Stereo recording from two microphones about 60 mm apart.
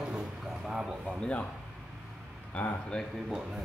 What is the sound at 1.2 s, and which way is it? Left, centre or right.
Speech, left.